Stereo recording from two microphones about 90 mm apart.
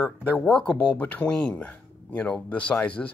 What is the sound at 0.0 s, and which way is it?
Speech, 20° left (ahead or behind).